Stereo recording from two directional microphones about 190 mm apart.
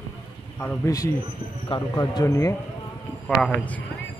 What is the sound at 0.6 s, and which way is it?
Speech, 15° left (ahead or behind).